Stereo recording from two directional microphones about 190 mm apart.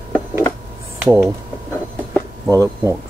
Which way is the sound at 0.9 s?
5° right (ahead or behind).